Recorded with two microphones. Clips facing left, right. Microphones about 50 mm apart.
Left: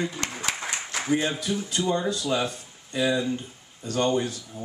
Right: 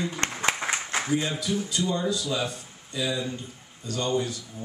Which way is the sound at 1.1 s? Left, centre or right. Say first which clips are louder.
Left 3 dB; left.